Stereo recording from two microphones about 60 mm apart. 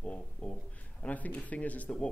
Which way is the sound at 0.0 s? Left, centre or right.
Centre.